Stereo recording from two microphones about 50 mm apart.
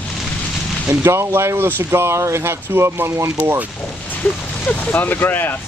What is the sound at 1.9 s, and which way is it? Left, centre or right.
Speech, right.